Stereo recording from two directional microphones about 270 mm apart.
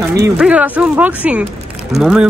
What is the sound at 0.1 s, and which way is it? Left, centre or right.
Speech, centre.